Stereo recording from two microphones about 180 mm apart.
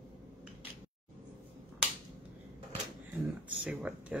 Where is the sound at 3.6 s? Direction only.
5° right (ahead or behind).